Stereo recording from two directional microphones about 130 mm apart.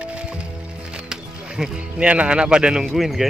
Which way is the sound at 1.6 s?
10° right (ahead or behind).